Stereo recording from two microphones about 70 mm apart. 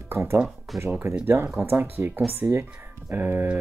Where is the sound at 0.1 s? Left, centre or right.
Right.